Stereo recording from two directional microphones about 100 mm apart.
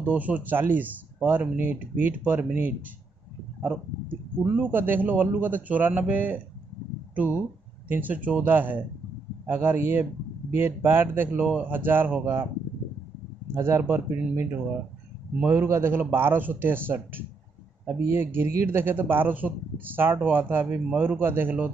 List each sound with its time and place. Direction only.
0.0 s a man's voice: 15° right (ahead or behind)
13.6 s a man's voice: 25° right (ahead or behind)